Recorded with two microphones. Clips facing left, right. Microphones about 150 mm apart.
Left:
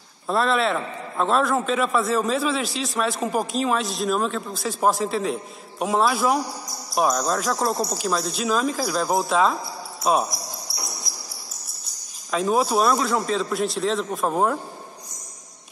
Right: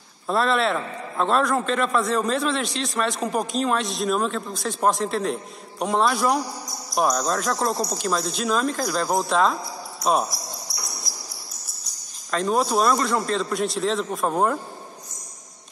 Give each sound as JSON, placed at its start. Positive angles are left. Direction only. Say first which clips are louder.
{"t": 0.3, "sound": "a man's voice", "louder": "even", "side_deg": 0}
{"t": 10.7, "sound": "cricket", "louder": "left 2 dB", "side_deg": 5}
{"t": 12.3, "sound": "a man's voice", "louder": "left 1 dB", "side_deg": 5}